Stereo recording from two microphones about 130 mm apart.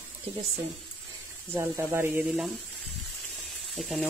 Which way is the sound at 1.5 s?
15° right (ahead or behind).